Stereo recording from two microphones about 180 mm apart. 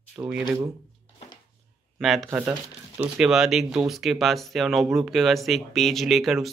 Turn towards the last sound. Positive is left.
turn(degrees=0)  # may be behind; listen again after turning